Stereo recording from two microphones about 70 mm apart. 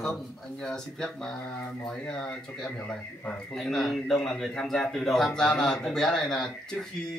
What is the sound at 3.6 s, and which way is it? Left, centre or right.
A man's voice, centre.